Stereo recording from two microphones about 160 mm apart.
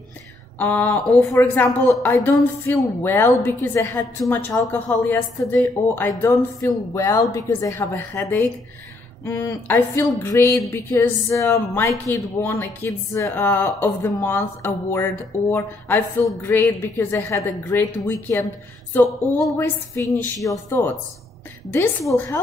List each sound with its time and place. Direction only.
0.6 s a woman's voice: 10° left (ahead or behind)